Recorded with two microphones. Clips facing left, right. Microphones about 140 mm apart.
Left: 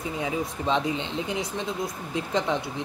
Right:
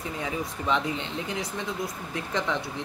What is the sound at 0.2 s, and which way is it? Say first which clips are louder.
Speech: left 3 dB; 20° left (ahead or behind).